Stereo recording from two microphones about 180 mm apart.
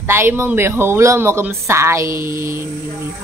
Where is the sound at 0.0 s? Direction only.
15° right (ahead or behind).